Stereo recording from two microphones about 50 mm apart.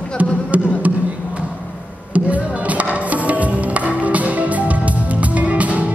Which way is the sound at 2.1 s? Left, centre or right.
Right.